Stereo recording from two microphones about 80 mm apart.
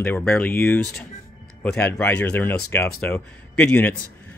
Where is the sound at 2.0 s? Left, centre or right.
Left.